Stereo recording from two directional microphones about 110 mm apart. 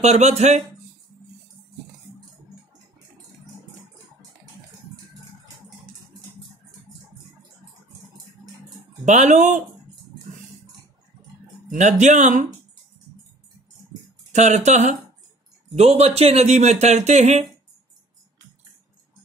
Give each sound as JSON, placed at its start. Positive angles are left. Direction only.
{"t": 0.0, "sound": "speech", "side_deg": -90}
{"t": 9.0, "sound": "speech", "side_deg": -90}
{"t": 11.8, "sound": "speech", "side_deg": -90}
{"t": 14.3, "sound": "speech", "side_deg": -90}
{"t": 15.7, "sound": "speech", "side_deg": -70}